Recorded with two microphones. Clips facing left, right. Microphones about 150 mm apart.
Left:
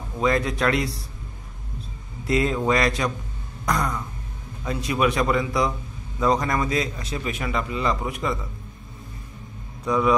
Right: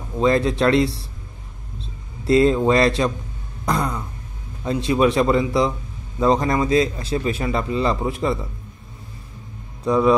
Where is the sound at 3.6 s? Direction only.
30° right (ahead or behind).